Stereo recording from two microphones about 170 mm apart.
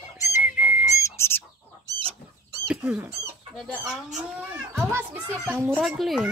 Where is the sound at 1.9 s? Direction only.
20° right (ahead or behind).